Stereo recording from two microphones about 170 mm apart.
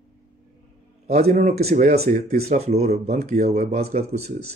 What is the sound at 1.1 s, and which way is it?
Speech, 45° right (ahead or behind).